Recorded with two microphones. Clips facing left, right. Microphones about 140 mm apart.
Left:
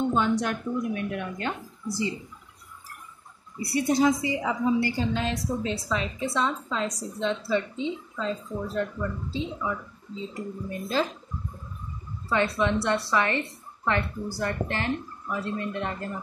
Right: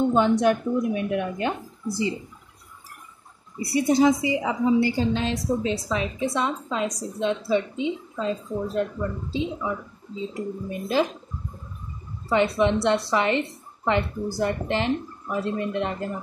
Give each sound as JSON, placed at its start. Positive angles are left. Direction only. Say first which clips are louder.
{"t": 0.1, "sound": "a woman's voice", "louder": "right 6 dB", "side_deg": -25}
{"t": 3.7, "sound": "a woman's voice", "louder": "right 3 dB", "side_deg": -20}
{"t": 12.3, "sound": "a woman's voice", "louder": "right 4 dB", "side_deg": -20}